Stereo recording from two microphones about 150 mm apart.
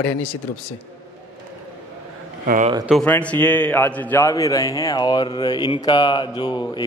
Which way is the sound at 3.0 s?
10° left (ahead or behind).